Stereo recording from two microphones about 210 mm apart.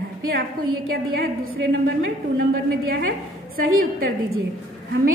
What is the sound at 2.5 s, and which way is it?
Speech, 45° right (ahead or behind).